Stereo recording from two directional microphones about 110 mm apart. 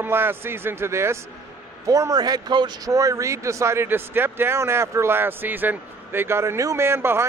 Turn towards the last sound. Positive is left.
turn(degrees=-20)  # may be behind; listen again after turning